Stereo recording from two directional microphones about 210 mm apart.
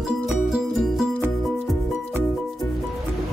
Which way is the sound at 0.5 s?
5° right (ahead or behind).